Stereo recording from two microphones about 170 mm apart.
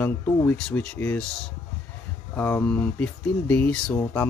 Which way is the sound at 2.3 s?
10° left (ahead or behind).